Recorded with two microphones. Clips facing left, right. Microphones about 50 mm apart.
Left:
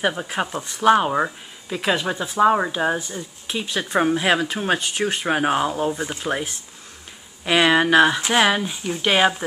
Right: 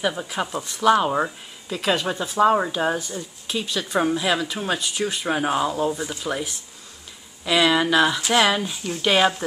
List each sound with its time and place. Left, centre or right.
0.2 s speech: left
8.3 s speech: left